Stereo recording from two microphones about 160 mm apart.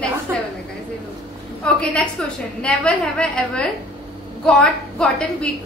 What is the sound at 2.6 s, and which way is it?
A woman's voice, 5° left (ahead or behind).